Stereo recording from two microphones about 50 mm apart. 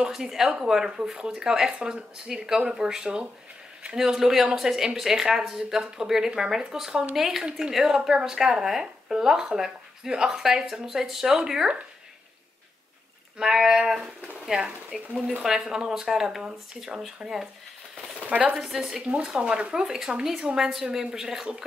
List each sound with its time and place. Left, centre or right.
0.1 s a woman's voice: centre
7.4 s a woman's voice: centre
13.4 s a woman's voice: centre
18.2 s speech: right
18.6 s a woman's voice: centre